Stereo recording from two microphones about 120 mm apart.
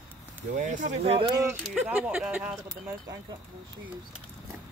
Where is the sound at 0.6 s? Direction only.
85° right.